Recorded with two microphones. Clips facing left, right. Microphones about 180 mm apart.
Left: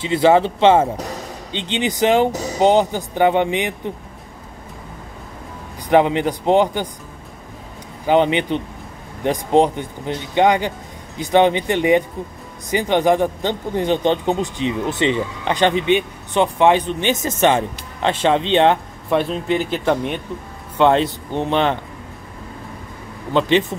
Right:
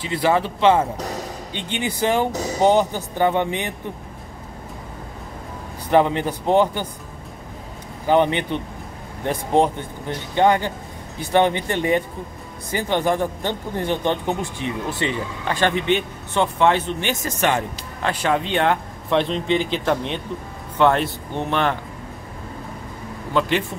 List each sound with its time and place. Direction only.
0.0 s speech: 25° left (ahead or behind)
5.9 s speech: 15° left (ahead or behind)
8.1 s speech: 15° left (ahead or behind)
19.0 s speech: 10° left (ahead or behind)
23.3 s speech: 20° left (ahead or behind)